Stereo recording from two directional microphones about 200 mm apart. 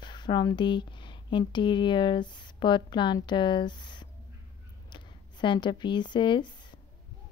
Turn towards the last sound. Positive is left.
turn(degrees=25)  # may be behind; listen again after turning